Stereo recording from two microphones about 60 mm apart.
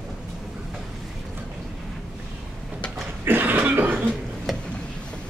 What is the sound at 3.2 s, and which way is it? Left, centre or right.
Cough, right.